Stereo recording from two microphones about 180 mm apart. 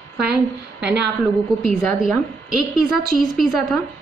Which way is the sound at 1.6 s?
Centre (ahead or behind).